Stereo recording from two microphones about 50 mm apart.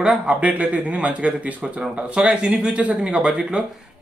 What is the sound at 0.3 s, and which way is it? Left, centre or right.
Speech, right.